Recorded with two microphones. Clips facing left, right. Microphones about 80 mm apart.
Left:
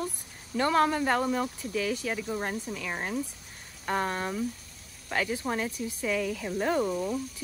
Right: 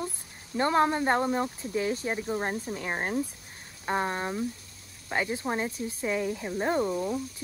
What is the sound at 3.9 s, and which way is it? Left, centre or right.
Speech, right.